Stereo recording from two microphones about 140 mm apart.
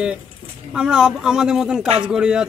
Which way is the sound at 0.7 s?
5° right (ahead or behind).